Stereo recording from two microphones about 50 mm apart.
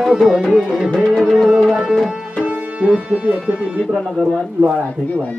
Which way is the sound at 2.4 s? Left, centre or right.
Right.